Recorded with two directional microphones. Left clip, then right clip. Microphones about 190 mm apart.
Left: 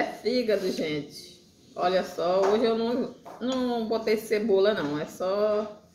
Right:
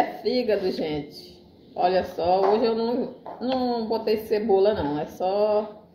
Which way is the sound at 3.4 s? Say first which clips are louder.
Right 3 dB; 35° left (ahead or behind).